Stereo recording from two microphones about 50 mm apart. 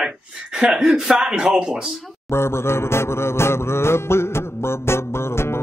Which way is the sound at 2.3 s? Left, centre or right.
Left.